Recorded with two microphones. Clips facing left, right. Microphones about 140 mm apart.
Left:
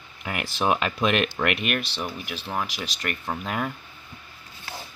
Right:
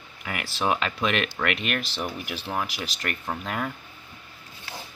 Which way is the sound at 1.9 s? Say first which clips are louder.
Right 1 dB; 5° right (ahead or behind).